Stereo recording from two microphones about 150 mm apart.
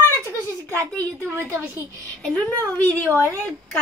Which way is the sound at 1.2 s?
15° right (ahead or behind).